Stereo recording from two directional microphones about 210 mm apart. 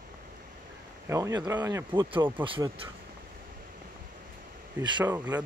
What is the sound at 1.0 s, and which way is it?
Speech, 15° right (ahead or behind).